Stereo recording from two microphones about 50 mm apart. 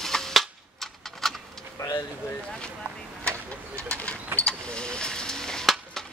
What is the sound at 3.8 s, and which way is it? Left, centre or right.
Bird, left.